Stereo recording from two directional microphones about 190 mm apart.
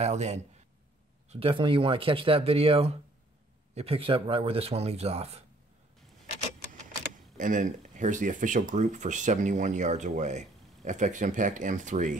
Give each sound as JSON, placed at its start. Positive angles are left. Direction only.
{"t": 0.0, "sound": "speech", "side_deg": -35}
{"t": 7.3, "sound": "speech", "side_deg": -45}